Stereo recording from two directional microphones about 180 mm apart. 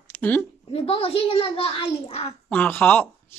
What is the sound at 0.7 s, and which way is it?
A child's voice, 30° left (ahead or behind).